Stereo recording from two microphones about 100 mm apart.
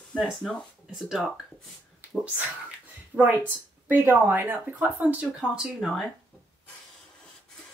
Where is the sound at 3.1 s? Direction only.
10° right (ahead or behind).